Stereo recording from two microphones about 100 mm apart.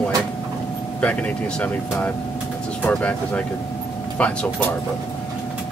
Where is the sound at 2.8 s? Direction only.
15° left (ahead or behind).